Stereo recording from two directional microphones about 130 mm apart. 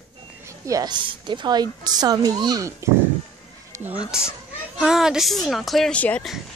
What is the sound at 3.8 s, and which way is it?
Speech, 10° right (ahead or behind).